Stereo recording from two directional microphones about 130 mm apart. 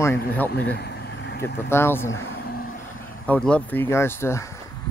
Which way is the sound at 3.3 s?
10° left (ahead or behind).